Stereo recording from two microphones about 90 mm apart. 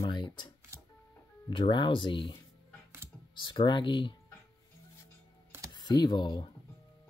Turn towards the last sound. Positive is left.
turn(degrees=55)  # may be behind; listen again after turning